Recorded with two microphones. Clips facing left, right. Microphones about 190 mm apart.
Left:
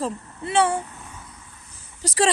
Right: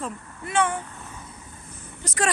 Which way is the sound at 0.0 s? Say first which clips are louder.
Left 5 dB; 30° left (ahead or behind).